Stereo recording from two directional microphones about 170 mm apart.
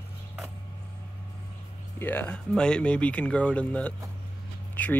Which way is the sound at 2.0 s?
10° left (ahead or behind).